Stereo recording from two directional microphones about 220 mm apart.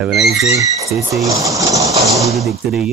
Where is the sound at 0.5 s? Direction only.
15° right (ahead or behind).